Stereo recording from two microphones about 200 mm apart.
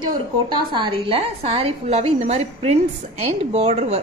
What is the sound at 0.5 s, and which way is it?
A woman's voice, 25° right (ahead or behind).